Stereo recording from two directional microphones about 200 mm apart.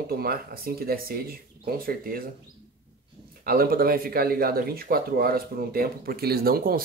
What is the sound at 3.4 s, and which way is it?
Speech, 50° right (ahead or behind).